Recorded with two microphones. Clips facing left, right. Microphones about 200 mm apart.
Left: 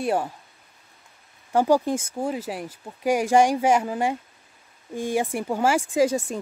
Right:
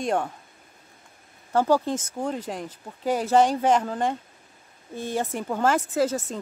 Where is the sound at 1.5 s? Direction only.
15° left (ahead or behind).